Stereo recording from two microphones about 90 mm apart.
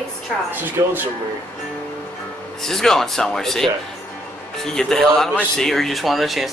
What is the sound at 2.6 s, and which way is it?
Speech, 5° left (ahead or behind).